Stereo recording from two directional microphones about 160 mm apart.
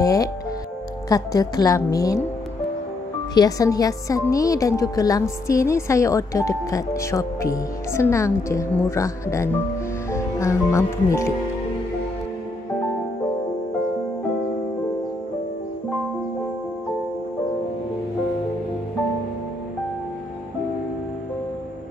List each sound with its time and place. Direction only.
0.0 s a woman's voice: 20° left (ahead or behind)
3.3 s a woman's voice: 20° left (ahead or behind)